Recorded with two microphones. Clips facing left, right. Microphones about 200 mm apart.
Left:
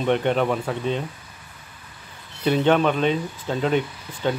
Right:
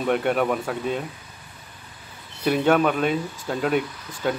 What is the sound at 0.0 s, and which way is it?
Speech, 5° right (ahead or behind).